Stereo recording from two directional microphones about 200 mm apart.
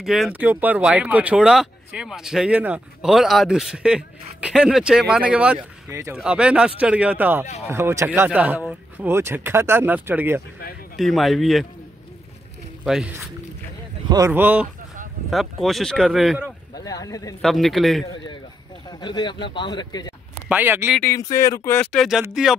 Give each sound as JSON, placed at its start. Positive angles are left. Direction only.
{"t": 0.0, "sound": "speech", "side_deg": 0}
{"t": 11.0, "sound": "speech", "side_deg": 0}
{"t": 12.8, "sound": "speech", "side_deg": 0}
{"t": 14.0, "sound": "speech", "side_deg": -15}
{"t": 16.7, "sound": "speech", "side_deg": 20}
{"t": 17.4, "sound": "speech", "side_deg": 0}
{"t": 18.9, "sound": "a man's voice", "side_deg": 20}
{"t": 20.4, "sound": "speech", "side_deg": -10}
{"t": 21.0, "sound": "speech", "side_deg": 15}
{"t": 21.9, "sound": "speech", "side_deg": 0}